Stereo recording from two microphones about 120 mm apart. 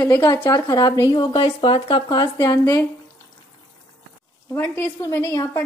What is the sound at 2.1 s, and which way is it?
Speech, 35° left (ahead or behind).